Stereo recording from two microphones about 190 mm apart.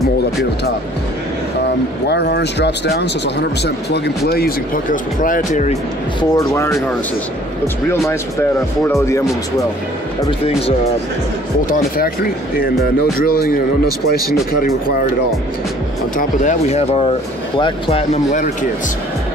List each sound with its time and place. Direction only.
2.0 s speech: 60° left (ahead or behind); by 5.8 s 40° left (ahead or behind)
6.3 s speech: 15° left (ahead or behind)
8.8 s speech: 15° left (ahead or behind)
12.0 s speech: 50° left (ahead or behind)
16.2 s speech: 40° left (ahead or behind)